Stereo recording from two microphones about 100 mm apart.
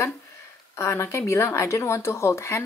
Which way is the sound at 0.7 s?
30° left (ahead or behind).